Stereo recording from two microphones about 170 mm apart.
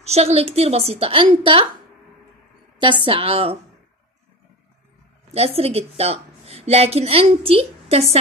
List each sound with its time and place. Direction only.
0.0 s a woman's voice: 40° right (ahead or behind)
2.8 s a woman's voice: 30° right (ahead or behind)
5.3 s a woman's voice: 35° right (ahead or behind)